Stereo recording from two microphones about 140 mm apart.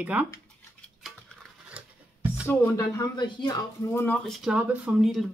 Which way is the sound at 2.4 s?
20° left (ahead or behind).